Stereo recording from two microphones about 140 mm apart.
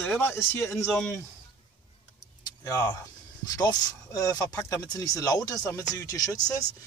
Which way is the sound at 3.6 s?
25° left (ahead or behind).